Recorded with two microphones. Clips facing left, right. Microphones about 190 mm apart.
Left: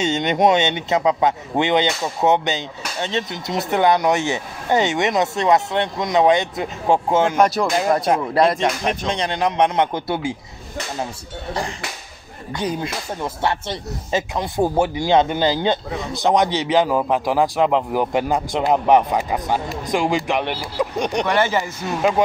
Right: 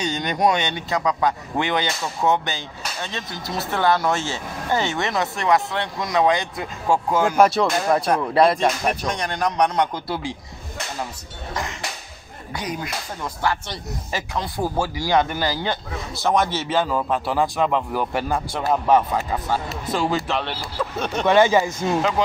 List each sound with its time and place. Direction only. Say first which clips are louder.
0.0 s speech: left 4 dB; 25° left (ahead or behind)
7.3 s speech: right 1 dB; centre (ahead or behind)
8.1 s speech: right 1 dB; 20° left (ahead or behind)
12.6 s speech: left 5 dB; 25° left (ahead or behind)
21.3 s speech: right 7 dB; 15° right (ahead or behind)